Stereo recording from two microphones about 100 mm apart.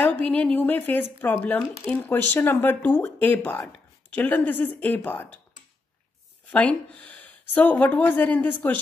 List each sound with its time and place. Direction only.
0.1 s speech: 15° left (ahead or behind)
6.5 s speech: 15° left (ahead or behind)